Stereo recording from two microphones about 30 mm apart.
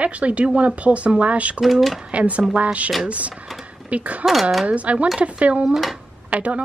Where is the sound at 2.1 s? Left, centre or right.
Right.